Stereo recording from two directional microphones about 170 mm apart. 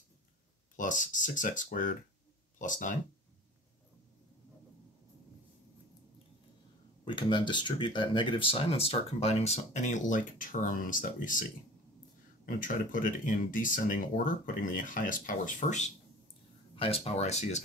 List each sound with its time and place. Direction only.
0.7 s speech: 50° left (ahead or behind)
7.1 s speech: 25° left (ahead or behind); by 11.4 s 50° left (ahead or behind)
12.4 s speech: 55° left (ahead or behind)